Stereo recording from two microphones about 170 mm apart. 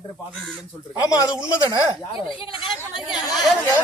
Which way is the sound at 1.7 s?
25° left (ahead or behind).